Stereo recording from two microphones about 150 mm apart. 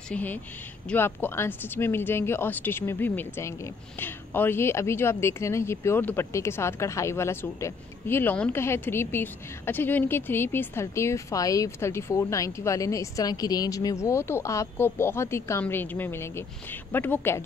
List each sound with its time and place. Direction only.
0.1 s speech: 10° left (ahead or behind)